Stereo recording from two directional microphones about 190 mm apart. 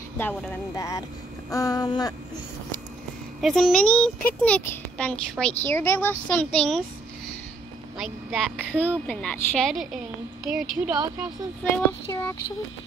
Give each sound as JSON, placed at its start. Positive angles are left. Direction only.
{"t": 0.2, "sound": "a woman's voice", "side_deg": 10}
{"t": 1.5, "sound": "vehicle", "side_deg": 20}
{"t": 3.3, "sound": "a child's voice", "side_deg": 0}
{"t": 8.0, "sound": "a child's voice", "side_deg": 0}
{"t": 11.7, "sound": "a woman's voice", "side_deg": 10}